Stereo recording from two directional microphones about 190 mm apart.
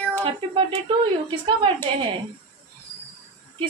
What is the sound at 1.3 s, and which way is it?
Speech, 25° right (ahead or behind).